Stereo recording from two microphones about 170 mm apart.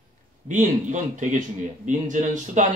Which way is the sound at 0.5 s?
45° right (ahead or behind).